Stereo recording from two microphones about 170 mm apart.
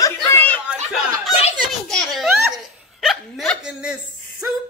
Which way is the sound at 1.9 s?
5° left (ahead or behind).